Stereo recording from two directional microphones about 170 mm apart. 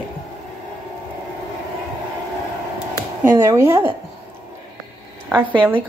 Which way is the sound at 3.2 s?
15° right (ahead or behind).